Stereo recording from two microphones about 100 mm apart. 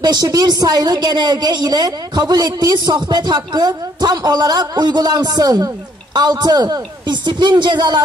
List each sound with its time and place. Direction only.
0.0 s a woman's voice: 45° right (ahead or behind)